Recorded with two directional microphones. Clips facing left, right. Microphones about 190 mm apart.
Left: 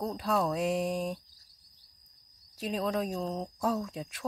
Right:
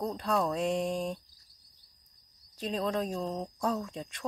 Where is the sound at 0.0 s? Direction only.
Centre (ahead or behind).